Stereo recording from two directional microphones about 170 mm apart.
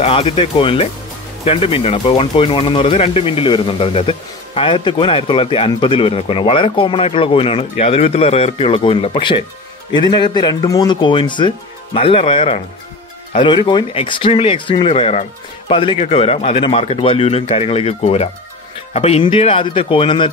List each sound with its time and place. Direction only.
0.0 s speech: 35° left (ahead or behind)
13.7 s speech: 30° left (ahead or behind)